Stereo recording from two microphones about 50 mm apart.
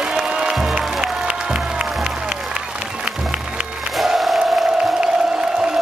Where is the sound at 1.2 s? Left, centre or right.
Centre.